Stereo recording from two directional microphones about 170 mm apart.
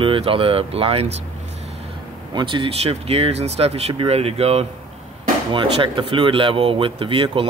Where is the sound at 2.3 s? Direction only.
30° right (ahead or behind).